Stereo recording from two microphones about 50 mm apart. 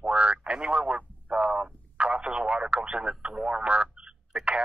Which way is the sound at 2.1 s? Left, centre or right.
Centre.